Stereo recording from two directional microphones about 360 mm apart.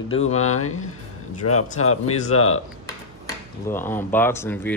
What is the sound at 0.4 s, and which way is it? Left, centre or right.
Speech, left.